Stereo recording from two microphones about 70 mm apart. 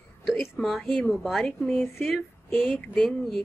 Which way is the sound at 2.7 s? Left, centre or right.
Centre.